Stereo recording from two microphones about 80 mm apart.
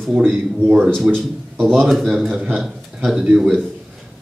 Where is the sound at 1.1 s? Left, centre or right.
Centre.